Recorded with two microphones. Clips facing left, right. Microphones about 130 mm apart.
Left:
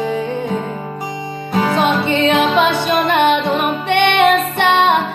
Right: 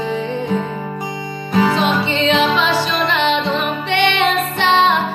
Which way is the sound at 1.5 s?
45° left (ahead or behind).